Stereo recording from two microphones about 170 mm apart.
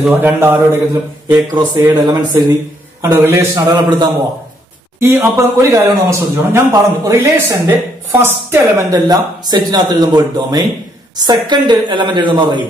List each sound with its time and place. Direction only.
0.0 s a man's voice: 10° right (ahead or behind)
1.3 s a man's voice: 25° right (ahead or behind)
5.0 s a man's voice: 10° right (ahead or behind); by 12.6 s 25° right (ahead or behind)